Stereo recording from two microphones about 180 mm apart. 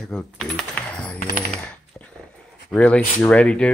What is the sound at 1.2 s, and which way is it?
Coin, 45° left (ahead or behind).